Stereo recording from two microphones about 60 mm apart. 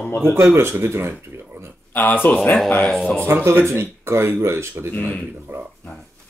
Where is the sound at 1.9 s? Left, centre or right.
Left.